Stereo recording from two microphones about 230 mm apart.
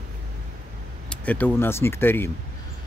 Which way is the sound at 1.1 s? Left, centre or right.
Centre.